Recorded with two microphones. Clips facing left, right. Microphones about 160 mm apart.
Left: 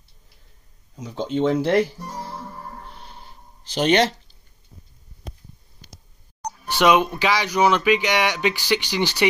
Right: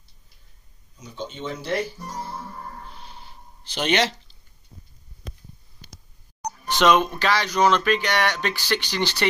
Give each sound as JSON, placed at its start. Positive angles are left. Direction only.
{"t": 0.9, "sound": "speech", "side_deg": 90}
{"t": 2.9, "sound": "a sound", "side_deg": 55}
{"t": 6.6, "sound": "speech", "side_deg": 10}